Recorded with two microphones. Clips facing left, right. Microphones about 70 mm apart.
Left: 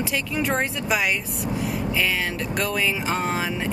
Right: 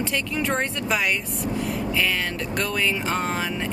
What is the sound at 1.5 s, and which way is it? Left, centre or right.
Vehicle, centre.